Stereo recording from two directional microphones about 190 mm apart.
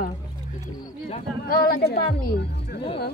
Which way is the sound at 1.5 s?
50° left (ahead or behind).